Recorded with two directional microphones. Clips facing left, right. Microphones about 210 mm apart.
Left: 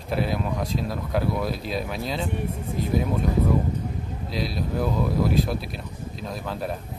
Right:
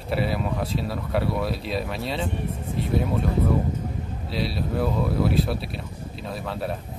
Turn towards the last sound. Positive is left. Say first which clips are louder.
# even
turn(degrees=0)  # may be behind; listen again after turning